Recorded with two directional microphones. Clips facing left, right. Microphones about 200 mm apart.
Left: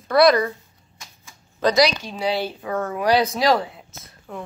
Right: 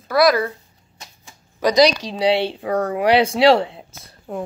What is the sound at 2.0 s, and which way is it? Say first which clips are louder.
Speech: right 6 dB; 90° right.